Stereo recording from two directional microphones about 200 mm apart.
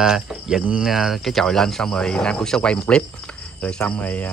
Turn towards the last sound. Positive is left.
turn(degrees=10)  # may be behind; listen again after turning